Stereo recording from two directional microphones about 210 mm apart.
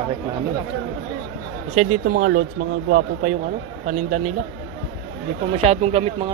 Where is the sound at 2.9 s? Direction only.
55° right (ahead or behind).